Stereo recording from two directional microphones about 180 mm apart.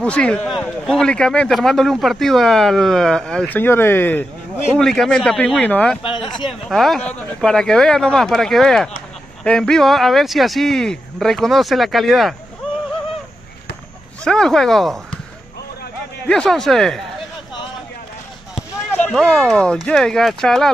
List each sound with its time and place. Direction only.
0.0 s a man's voice: 5° left (ahead or behind)
6.0 s speech: 25° left (ahead or behind)
6.4 s a man's voice: centre (ahead or behind)
14.2 s a man's voice: 5° left (ahead or behind)
16.3 s a man's voice: 5° left (ahead or behind)
18.9 s a man's voice: 5° left (ahead or behind)